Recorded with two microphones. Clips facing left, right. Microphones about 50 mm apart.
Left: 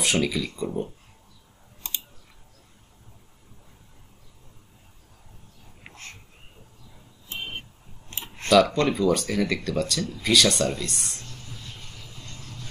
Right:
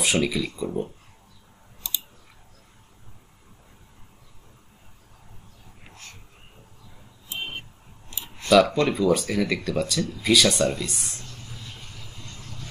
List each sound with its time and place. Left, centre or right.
0.0 s speech: centre
1.8 s clicking: left
5.9 s a sound: left
8.1 s clicking: left
8.5 s speech: centre